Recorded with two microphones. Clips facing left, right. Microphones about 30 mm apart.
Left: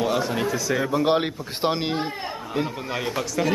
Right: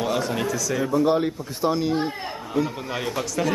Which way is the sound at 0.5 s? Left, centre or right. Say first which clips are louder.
Left 1 dB; left.